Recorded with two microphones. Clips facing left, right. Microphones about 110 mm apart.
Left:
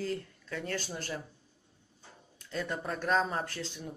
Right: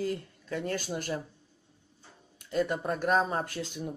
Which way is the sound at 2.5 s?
15° right (ahead or behind).